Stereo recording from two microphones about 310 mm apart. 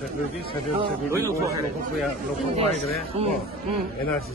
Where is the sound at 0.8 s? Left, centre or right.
Centre.